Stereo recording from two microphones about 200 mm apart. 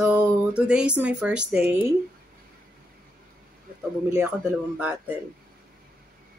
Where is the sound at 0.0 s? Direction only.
5° right (ahead or behind).